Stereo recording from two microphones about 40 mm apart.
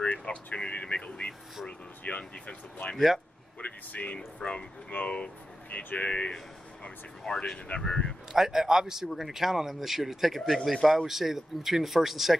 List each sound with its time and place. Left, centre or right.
0.0 s speech: left
8.3 s speech: centre